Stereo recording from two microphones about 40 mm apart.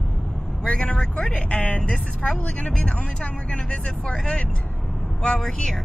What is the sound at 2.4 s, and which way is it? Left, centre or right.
Speech, left.